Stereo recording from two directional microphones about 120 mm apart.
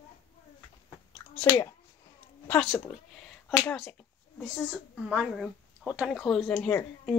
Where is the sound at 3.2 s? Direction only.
5° left (ahead or behind).